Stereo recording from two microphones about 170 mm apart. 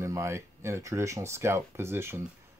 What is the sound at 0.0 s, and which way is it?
Speech, 15° right (ahead or behind).